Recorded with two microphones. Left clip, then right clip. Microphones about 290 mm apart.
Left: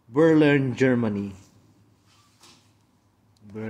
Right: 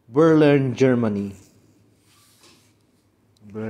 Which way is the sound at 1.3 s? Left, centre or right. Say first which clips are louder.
Right 3 dB; centre.